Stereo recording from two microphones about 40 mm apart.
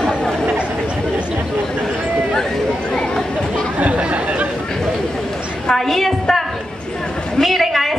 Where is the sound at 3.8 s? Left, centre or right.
Right.